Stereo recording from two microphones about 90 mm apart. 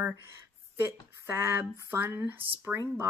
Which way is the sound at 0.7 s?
30° right (ahead or behind).